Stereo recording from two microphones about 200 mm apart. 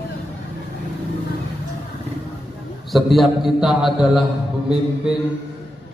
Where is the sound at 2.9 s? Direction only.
Centre (ahead or behind).